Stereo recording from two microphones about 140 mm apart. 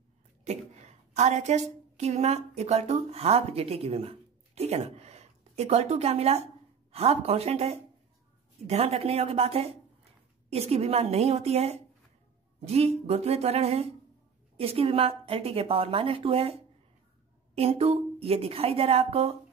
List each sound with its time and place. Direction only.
0.5 s a woman's voice: 55° right (ahead or behind)